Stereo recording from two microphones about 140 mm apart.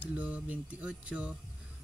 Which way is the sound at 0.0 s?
10° right (ahead or behind).